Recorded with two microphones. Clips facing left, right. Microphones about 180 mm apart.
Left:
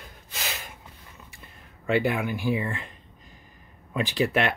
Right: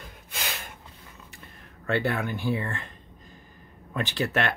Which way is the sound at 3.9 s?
10° left (ahead or behind).